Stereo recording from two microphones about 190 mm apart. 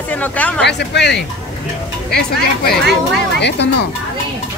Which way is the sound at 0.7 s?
65° left (ahead or behind).